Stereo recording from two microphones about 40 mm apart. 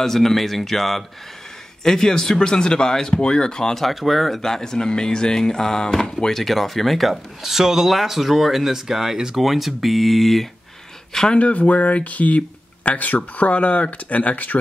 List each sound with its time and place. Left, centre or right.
0.0 s speech: centre
3.7 s speech: centre
4.4 s speech: centre
11.3 s speech: left